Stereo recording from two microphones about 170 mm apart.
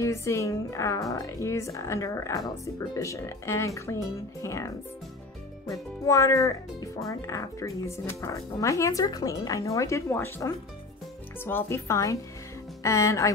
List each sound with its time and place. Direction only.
0.0 s speech: 15° left (ahead or behind)